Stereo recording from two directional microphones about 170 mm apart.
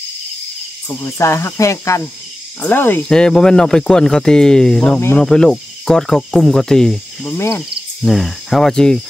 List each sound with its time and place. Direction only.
0.8 s speech: 15° left (ahead or behind)
7.2 s speech: 15° left (ahead or behind)
8.0 s speech: centre (ahead or behind)